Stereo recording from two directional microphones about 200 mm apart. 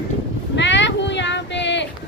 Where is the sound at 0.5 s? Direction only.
65° left (ahead or behind).